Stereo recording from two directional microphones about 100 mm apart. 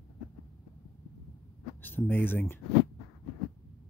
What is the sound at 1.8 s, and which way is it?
Speech, 20° left (ahead or behind).